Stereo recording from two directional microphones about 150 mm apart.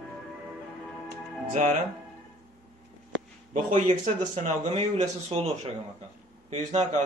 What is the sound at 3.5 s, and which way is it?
A man's voice, 55° right (ahead or behind).